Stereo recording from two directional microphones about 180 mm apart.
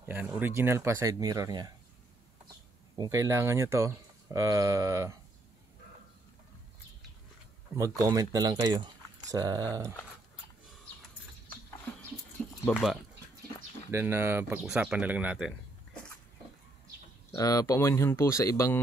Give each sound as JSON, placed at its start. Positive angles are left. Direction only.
{"t": 0.1, "sound": "speech", "side_deg": -10}
{"t": 3.0, "sound": "speech", "side_deg": -20}
{"t": 7.7, "sound": "speech", "side_deg": -20}
{"t": 12.6, "sound": "speech", "side_deg": 0}
{"t": 13.8, "sound": "speech", "side_deg": -15}
{"t": 17.3, "sound": "speech", "side_deg": 20}